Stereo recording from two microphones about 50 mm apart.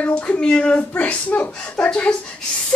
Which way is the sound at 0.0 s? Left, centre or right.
Left.